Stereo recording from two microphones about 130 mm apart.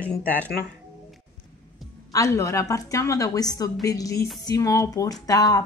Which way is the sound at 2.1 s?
25° left (ahead or behind).